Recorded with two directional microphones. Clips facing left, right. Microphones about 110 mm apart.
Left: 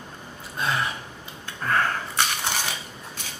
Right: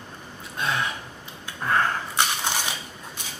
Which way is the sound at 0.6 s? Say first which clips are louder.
Left 1 dB; centre (ahead or behind).